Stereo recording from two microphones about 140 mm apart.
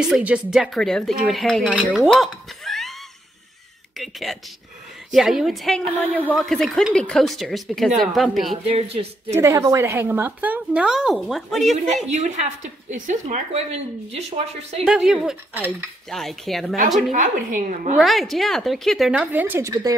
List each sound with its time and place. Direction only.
0.0 s a woman's voice: 5° right (ahead or behind)
0.7 s a woman's voice: 5° left (ahead or behind)
4.0 s a woman's voice: centre (ahead or behind)
8.6 s a woman's voice: 45° right (ahead or behind)
9.4 s a woman's voice: 20° right (ahead or behind); by 11.7 s centre (ahead or behind)
12.1 s a woman's voice: 55° right (ahead or behind)
14.9 s a woman's voice: 5° right (ahead or behind)
17.1 s a woman's voice: 65° right (ahead or behind)
17.9 s a woman's voice: centre (ahead or behind)
19.3 s a woman's voice: 15° right (ahead or behind)
19.7 s speech: 25° right (ahead or behind)